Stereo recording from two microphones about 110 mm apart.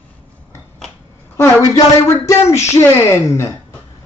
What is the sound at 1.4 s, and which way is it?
A woman's voice, 30° left (ahead or behind).